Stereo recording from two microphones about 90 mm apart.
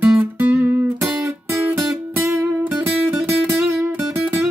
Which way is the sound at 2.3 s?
25° right (ahead or behind).